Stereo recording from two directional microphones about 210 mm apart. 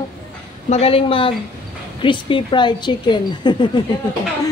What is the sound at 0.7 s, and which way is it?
Music, 30° left (ahead or behind).